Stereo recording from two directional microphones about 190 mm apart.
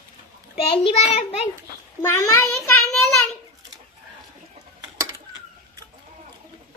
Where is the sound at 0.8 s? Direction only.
35° left (ahead or behind).